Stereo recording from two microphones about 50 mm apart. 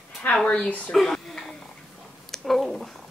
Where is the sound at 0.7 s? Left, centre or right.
Left.